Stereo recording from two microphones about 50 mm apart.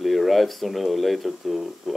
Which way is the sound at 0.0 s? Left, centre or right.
Centre.